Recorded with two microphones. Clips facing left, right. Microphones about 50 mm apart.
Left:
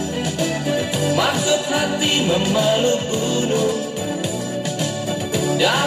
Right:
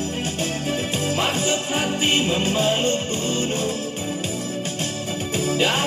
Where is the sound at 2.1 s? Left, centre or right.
Right.